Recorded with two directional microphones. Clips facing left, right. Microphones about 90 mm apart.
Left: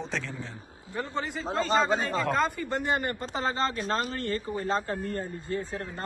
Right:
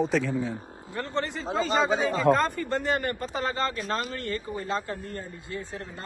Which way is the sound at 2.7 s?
15° left (ahead or behind).